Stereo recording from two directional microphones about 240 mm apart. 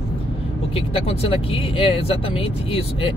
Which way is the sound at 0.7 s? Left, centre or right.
Left.